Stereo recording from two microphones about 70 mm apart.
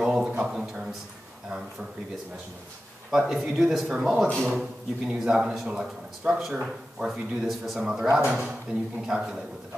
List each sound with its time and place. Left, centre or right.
0.0 s a sound: centre
0.5 s a man's voice: centre
3.1 s a man's voice: centre